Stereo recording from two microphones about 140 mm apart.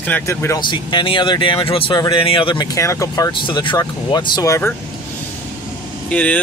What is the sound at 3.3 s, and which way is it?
Speech, 35° left (ahead or behind).